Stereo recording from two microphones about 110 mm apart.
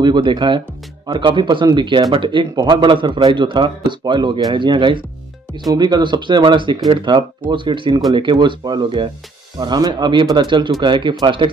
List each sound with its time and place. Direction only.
0.0 s speech: 45° right (ahead or behind)
5.7 s speech: 35° right (ahead or behind)